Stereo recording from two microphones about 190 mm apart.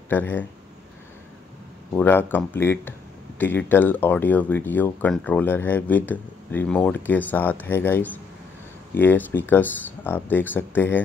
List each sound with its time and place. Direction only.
0.1 s speech: 10° left (ahead or behind)
2.0 s speech: 10° left (ahead or behind)